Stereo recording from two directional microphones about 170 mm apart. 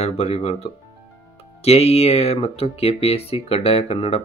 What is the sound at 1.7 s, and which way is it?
Speech, 40° left (ahead or behind).